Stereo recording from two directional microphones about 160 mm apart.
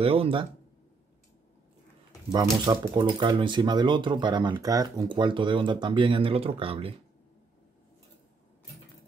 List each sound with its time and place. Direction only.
0.0 s speech: 35° right (ahead or behind)
2.3 s speech: 25° right (ahead or behind)